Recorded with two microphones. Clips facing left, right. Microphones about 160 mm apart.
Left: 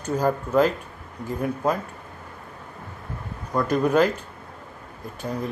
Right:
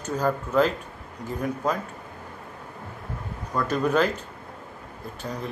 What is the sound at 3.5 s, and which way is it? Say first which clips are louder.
Speech: left 3 dB; 15° left (ahead or behind).